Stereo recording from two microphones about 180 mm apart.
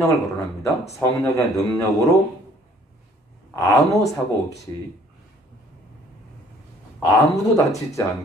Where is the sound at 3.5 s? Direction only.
20° left (ahead or behind).